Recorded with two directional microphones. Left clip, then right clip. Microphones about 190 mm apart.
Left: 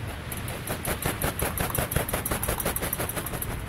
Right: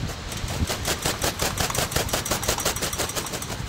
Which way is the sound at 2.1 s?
45° right (ahead or behind).